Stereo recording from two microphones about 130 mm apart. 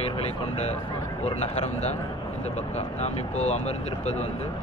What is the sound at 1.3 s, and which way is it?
Speech, 55° left (ahead or behind).